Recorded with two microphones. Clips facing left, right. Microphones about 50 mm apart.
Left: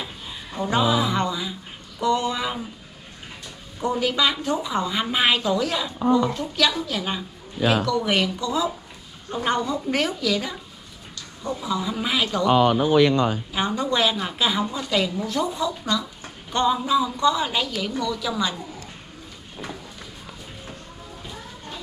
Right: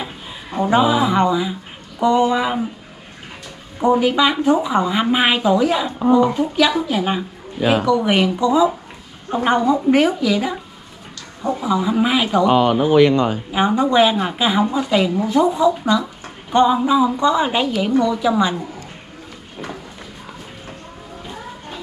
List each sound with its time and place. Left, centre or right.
0.5 s a woman's voice: right
3.8 s a woman's voice: right
11.6 s a woman's voice: right
12.4 s speech: right
13.5 s a woman's voice: right